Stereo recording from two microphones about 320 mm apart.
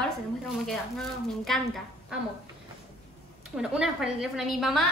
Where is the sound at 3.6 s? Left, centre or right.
Centre.